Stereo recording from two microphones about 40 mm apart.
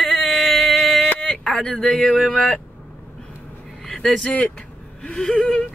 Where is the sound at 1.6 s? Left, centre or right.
Centre.